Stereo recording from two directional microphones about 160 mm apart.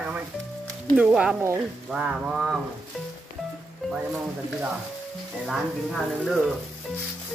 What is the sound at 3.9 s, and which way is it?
Speech, 5° right (ahead or behind).